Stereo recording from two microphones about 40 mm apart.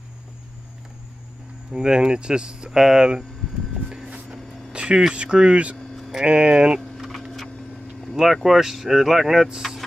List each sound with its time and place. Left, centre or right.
1.7 s speech: right
4.7 s speech: right
5.8 s a sound: centre
6.2 s speech: right
6.8 s a sound: centre
8.2 s speech: centre